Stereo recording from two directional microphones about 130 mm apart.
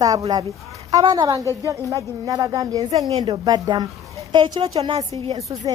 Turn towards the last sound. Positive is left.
turn(degrees=-50)  # may be behind; listen again after turning